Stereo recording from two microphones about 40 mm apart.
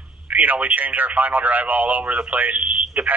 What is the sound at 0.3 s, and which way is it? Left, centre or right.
Speech, right.